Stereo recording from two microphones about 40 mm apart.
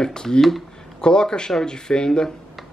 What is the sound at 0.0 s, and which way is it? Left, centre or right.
Speech, centre.